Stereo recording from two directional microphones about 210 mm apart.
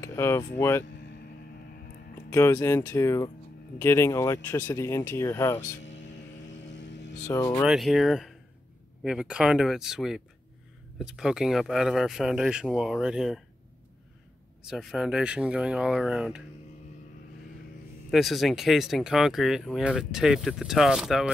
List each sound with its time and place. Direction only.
0.0 s speech: 15° left (ahead or behind)
2.3 s speech: 15° left (ahead or behind)
5.9 s a sound: 60° left (ahead or behind)
7.2 s speech: 15° left (ahead or behind)
7.6 s speech: centre (ahead or behind)
14.7 s speech: centre (ahead or behind)
18.1 s speech: centre (ahead or behind)